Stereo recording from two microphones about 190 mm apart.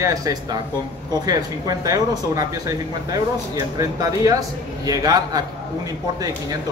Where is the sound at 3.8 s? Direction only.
20° right (ahead or behind).